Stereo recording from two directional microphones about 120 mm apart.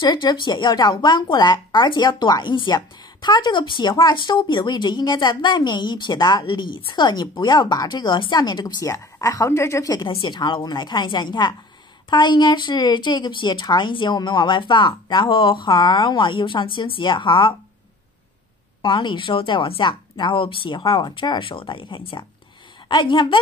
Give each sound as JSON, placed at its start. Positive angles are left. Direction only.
{"t": 0.0, "sound": "speech", "side_deg": 35}
{"t": 10.0, "sound": "speech", "side_deg": 40}
{"t": 18.8, "sound": "speech", "side_deg": 40}